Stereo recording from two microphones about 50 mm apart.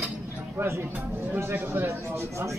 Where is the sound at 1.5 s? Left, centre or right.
Right.